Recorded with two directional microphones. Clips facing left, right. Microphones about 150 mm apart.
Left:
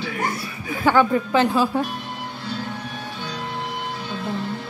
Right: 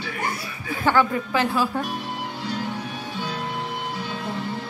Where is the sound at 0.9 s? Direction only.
20° left (ahead or behind).